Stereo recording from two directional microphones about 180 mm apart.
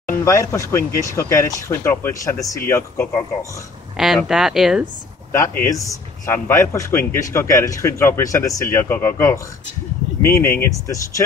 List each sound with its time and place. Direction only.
0.1 s a man's voice: 15° left (ahead or behind)
3.9 s speech: centre (ahead or behind)
5.3 s a man's voice: 15° left (ahead or behind)